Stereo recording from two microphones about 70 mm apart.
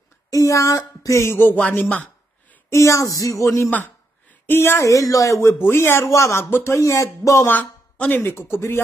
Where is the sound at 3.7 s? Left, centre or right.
Left.